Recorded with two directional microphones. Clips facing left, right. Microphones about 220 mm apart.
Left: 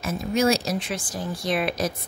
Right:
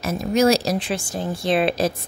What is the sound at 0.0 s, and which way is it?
Speech, 40° right (ahead or behind).